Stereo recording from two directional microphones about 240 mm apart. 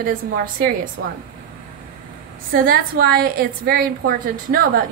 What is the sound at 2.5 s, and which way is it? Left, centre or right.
A woman's voice, right.